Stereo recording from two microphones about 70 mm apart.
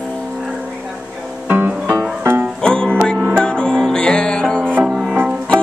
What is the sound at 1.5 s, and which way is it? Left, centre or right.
Music, right.